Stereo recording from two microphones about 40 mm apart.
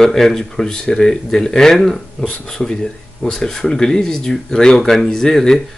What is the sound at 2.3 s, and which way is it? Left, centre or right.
Speech, left.